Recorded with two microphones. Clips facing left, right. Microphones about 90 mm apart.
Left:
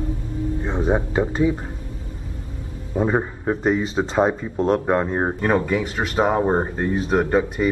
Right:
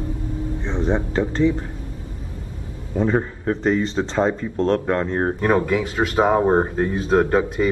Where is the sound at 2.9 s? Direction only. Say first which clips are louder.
Even; 15° left (ahead or behind).